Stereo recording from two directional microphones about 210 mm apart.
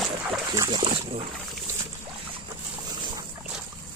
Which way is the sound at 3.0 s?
20° right (ahead or behind).